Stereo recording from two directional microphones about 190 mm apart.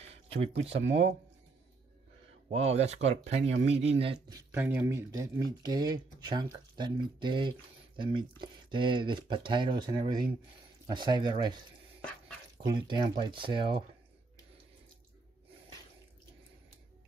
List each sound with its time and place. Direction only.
0.0 s a sound: 30° right (ahead or behind)
2.5 s speech: 35° right (ahead or behind)
4.4 s speech: 10° right (ahead or behind)
12.8 s speech: 25° right (ahead or behind)